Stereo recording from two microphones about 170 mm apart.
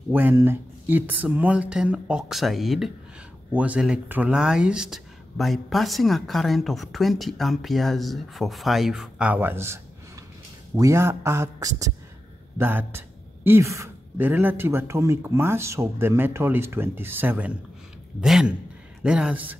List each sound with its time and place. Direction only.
0.1 s speech: 10° right (ahead or behind)
10.8 s speech: 15° right (ahead or behind)